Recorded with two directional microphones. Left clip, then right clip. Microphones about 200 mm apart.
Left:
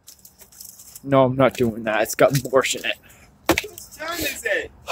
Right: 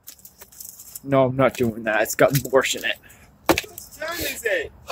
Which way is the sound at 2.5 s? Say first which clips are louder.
Even; 10° left (ahead or behind).